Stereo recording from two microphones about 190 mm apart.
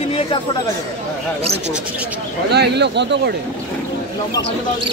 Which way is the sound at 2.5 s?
60° right (ahead or behind).